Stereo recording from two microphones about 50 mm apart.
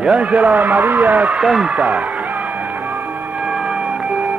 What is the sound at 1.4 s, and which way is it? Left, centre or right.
Speech, centre.